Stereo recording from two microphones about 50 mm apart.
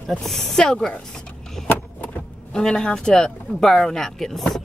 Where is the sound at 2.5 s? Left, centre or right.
Centre.